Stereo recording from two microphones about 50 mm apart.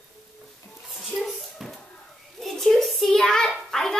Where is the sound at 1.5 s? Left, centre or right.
Centre.